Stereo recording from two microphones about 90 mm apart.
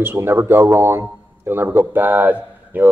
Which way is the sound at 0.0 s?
25° right (ahead or behind).